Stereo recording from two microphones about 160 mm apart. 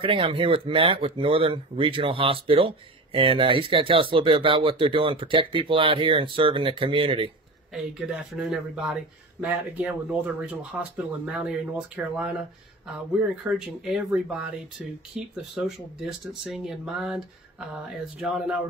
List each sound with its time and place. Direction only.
0.0 s speech: 35° right (ahead or behind)
7.7 s speech: 5° right (ahead or behind)
13.6 s speech: 5° right (ahead or behind)